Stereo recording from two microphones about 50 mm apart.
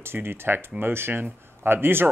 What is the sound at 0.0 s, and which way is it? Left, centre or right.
Speech, right.